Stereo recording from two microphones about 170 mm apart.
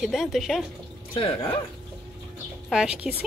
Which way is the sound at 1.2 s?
30° left (ahead or behind).